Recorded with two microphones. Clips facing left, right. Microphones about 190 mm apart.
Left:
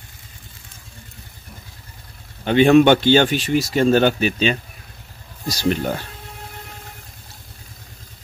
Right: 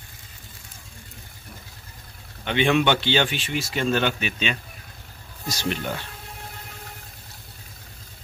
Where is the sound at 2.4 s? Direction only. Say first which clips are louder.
Left 9 dB; 40° left (ahead or behind).